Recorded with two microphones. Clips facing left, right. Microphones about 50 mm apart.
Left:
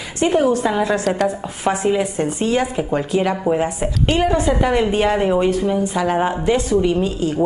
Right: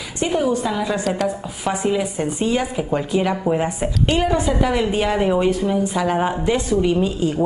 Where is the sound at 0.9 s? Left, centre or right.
Centre.